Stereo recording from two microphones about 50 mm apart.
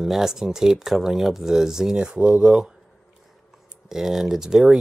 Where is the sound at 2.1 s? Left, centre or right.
Right.